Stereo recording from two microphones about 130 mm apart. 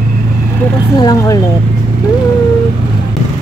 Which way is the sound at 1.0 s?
30° left (ahead or behind).